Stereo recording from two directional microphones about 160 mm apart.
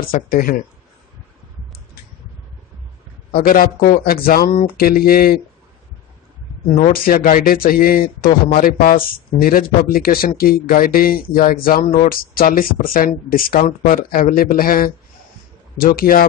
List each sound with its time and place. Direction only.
0.1 s speech: 65° left (ahead or behind)
3.3 s speech: 65° left (ahead or behind)
6.7 s speech: 60° left (ahead or behind)
16.0 s speech: 65° left (ahead or behind)